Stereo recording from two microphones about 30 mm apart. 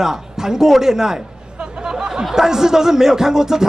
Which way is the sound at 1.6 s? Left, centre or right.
Right.